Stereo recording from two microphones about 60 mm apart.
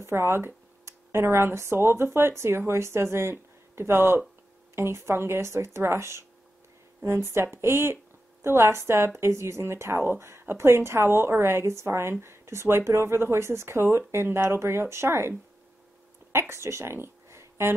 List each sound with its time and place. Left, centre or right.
0.0 s a woman's voice: right